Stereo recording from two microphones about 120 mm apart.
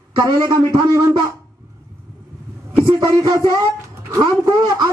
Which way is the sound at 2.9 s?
35° right (ahead or behind).